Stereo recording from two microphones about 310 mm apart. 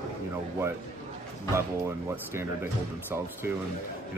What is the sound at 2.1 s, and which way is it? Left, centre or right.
Speech, centre.